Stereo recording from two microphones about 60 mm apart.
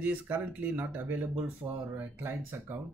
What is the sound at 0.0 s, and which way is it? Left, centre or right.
Speech, right.